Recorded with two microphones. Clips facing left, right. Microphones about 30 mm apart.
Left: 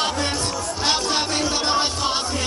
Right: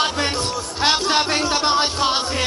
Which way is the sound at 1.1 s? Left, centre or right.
Centre.